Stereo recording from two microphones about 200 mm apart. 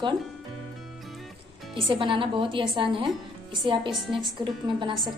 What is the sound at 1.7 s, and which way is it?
A woman's voice, 25° right (ahead or behind).